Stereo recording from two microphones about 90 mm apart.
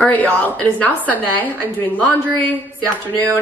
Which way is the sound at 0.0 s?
15° left (ahead or behind).